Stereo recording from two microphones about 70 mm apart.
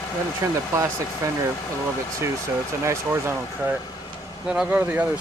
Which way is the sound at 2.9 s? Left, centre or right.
Right.